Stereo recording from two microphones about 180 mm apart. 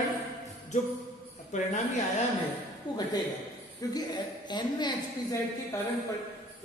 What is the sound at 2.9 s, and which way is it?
A woman's voice, 25° left (ahead or behind).